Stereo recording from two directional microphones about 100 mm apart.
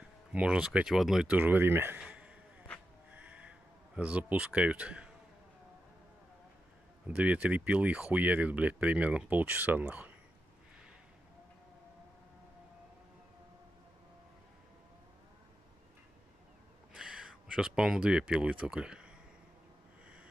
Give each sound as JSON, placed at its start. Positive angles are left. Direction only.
{"t": 0.0, "sound": "speech", "side_deg": -10}
{"t": 1.3, "sound": "speech", "side_deg": -20}
{"t": 2.0, "sound": "a sound", "side_deg": -10}
{"t": 7.1, "sound": "speech", "side_deg": -15}
{"t": 16.9, "sound": "speech", "side_deg": -10}